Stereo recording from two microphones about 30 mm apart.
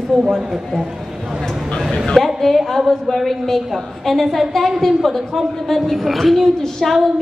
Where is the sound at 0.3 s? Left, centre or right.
Centre.